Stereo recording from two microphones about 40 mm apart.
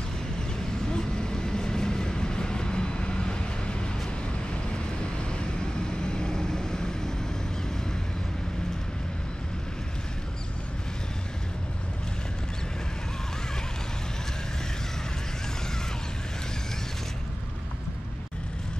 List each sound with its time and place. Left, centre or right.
0.8 s vehicle: centre
5.3 s vehicle: centre